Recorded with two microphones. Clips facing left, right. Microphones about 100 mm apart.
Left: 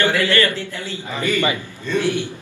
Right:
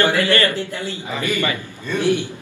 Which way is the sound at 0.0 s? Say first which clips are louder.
Right 1 dB; 20° right (ahead or behind).